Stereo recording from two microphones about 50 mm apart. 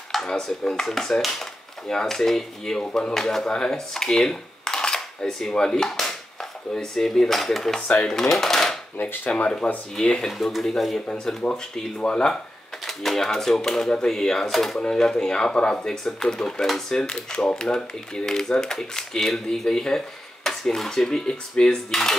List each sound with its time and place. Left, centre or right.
0.3 s speech: centre
8.9 s speech: left
9.3 s speech: left
10.1 s speech: centre
12.8 s speech: centre